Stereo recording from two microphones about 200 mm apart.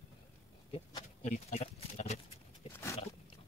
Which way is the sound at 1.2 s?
35° left (ahead or behind).